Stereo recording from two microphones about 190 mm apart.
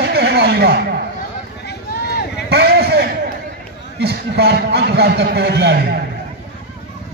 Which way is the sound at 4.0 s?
60° right (ahead or behind).